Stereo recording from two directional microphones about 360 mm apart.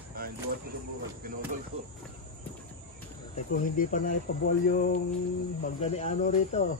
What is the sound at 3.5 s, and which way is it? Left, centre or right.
Speech, left.